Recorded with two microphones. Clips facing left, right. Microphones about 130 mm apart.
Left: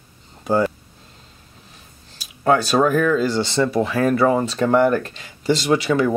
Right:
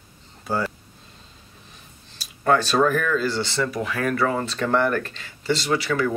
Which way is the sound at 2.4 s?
10° left (ahead or behind).